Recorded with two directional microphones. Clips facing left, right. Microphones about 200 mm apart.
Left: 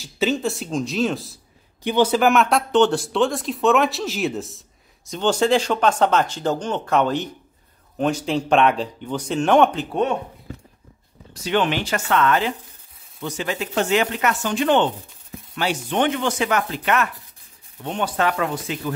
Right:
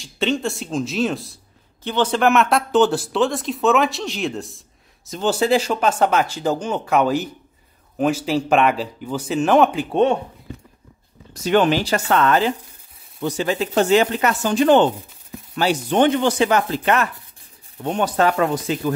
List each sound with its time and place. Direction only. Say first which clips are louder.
0.0 s speech: even; 5° left (ahead or behind)
1.8 s speech: left 2 dB; 10° left (ahead or behind); by 9.8 s 5° right (ahead or behind)
9.8 s speech: right 5 dB; 25° right (ahead or behind)
11.4 s speech: right 4 dB; 45° right (ahead or behind)
17.8 s speech: right 4 dB; 45° right (ahead or behind)